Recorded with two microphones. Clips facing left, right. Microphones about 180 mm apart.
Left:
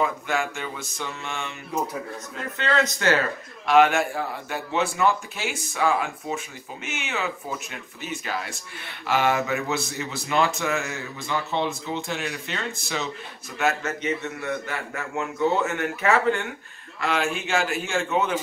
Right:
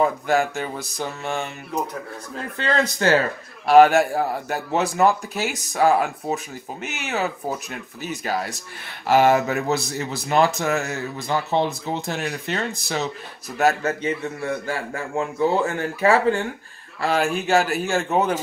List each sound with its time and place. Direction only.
0.0 s speech: 40° right (ahead or behind)
2.5 s speech: 35° right (ahead or behind)